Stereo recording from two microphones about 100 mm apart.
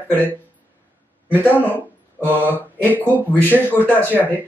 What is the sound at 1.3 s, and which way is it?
Speech, 20° left (ahead or behind).